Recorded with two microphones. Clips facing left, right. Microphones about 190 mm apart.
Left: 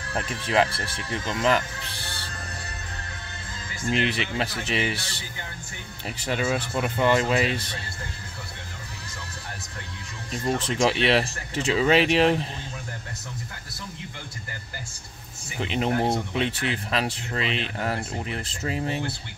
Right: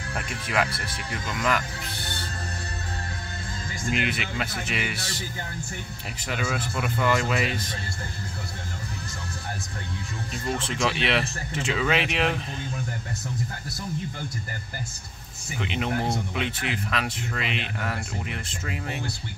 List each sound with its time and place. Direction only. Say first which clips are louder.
0.1 s speech: left 4 dB; 30° left (ahead or behind)
3.9 s speech: left 3 dB; 30° left (ahead or behind)
6.4 s speech: left 3 dB; 30° left (ahead or behind)
10.3 s speech: left 4 dB; 35° left (ahead or behind)
15.6 s speech: left 3 dB; 35° left (ahead or behind)